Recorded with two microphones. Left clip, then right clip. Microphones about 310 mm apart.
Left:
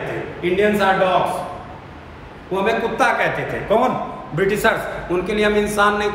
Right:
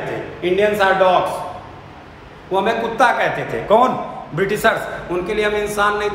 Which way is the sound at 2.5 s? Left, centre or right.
Centre.